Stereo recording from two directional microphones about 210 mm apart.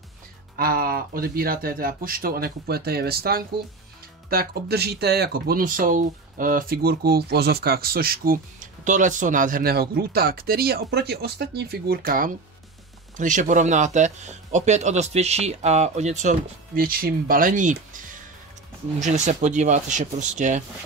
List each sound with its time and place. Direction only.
0.6 s speech: 45° right (ahead or behind)